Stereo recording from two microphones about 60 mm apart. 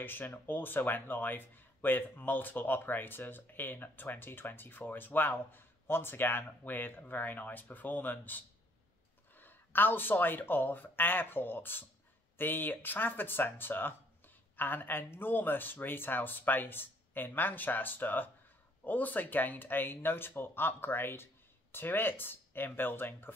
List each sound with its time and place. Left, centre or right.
0.0 s speech: left